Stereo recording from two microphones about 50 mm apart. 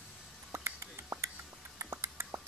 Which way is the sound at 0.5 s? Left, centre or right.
Right.